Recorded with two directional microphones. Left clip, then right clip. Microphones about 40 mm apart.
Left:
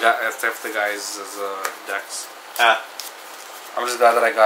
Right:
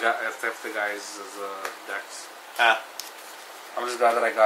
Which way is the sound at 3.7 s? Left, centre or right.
Left.